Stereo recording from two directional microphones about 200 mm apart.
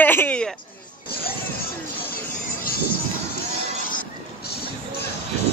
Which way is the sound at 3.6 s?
45° left (ahead or behind).